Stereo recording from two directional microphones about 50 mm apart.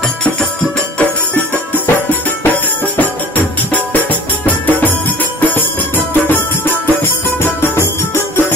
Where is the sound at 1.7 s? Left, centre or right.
Left.